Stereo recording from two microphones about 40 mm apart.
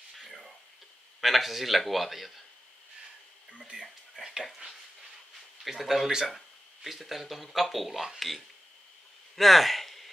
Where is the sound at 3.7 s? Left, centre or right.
Right.